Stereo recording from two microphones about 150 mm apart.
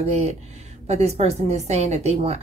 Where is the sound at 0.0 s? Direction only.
50° right (ahead or behind).